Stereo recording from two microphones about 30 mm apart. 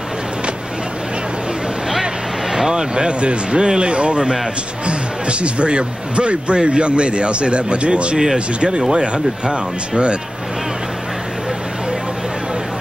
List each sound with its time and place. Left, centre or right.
2.7 s speech: right